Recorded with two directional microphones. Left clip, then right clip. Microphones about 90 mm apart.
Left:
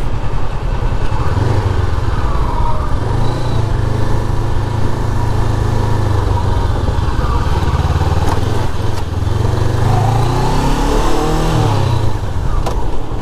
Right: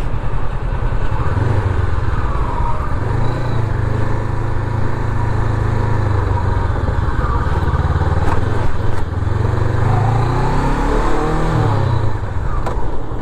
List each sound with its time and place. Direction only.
7.2 s vehicle: 35° left (ahead or behind)